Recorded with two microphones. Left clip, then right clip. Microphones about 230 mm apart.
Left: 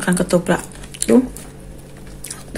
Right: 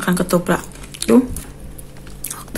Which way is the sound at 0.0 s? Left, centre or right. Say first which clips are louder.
Left 1 dB; centre.